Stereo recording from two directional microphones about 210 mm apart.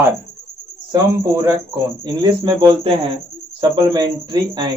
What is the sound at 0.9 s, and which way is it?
Speech, 15° right (ahead or behind).